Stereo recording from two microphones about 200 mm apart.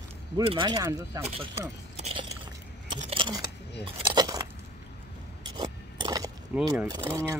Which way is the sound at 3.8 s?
20° right (ahead or behind).